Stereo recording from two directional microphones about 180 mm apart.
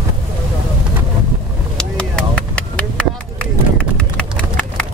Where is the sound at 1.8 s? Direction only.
5° left (ahead or behind).